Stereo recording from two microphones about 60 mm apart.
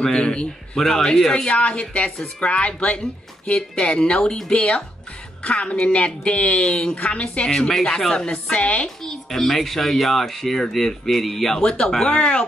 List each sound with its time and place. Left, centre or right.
0.0 s speech: centre
9.0 s speech: centre
11.6 s speech: centre